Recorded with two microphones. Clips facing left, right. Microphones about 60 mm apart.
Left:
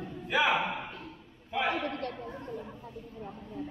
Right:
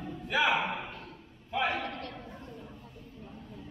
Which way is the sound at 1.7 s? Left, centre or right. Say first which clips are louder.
Left 3 dB; left.